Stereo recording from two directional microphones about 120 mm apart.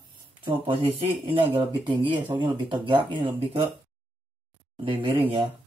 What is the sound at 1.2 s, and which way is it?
Speech, 45° right (ahead or behind).